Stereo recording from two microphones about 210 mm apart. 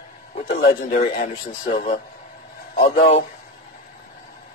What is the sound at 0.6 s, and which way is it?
Speech, 50° left (ahead or behind).